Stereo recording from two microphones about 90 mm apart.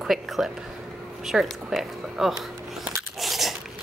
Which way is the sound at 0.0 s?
5° right (ahead or behind).